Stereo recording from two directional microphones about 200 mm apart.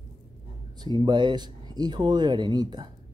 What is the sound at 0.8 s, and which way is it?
Speech, 20° right (ahead or behind).